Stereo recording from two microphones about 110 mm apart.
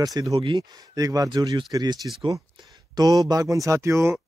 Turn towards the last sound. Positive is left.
turn(degrees=-25)  # may be behind; listen again after turning